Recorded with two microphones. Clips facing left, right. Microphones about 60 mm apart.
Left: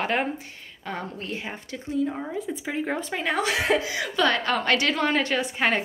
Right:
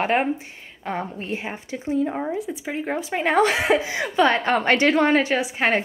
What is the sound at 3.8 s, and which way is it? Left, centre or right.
Speech, right.